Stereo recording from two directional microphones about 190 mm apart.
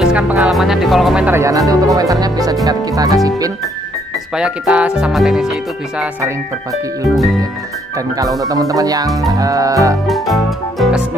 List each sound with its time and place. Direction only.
0.0 s speech: 5° right (ahead or behind)
4.4 s speech: 5° right (ahead or behind)
8.4 s speech: 20° right (ahead or behind)
10.0 s speech: centre (ahead or behind)